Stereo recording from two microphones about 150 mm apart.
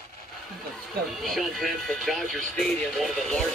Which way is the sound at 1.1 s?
Centre (ahead or behind).